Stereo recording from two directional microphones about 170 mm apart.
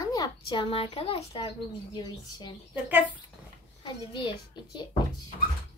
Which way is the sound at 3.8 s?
25° left (ahead or behind).